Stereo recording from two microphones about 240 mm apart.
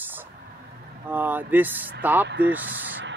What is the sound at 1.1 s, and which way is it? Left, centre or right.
Speech, centre.